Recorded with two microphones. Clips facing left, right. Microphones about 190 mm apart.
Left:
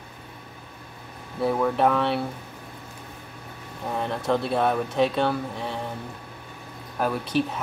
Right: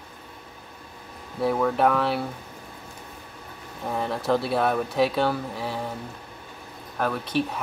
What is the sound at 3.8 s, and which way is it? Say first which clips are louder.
Speech: even; centre (ahead or behind).